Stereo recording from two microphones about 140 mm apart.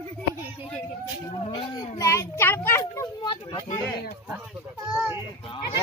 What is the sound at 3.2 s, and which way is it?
Speech, 35° left (ahead or behind).